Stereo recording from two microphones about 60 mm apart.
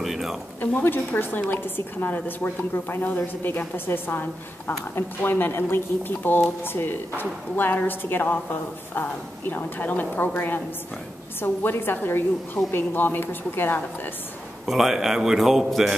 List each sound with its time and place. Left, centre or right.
0.0 s a sound: centre
0.8 s a woman's voice: left
9.5 s a woman's voice: left
14.7 s a man's voice: centre